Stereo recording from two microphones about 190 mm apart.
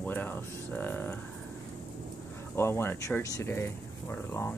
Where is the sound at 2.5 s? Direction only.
15° left (ahead or behind).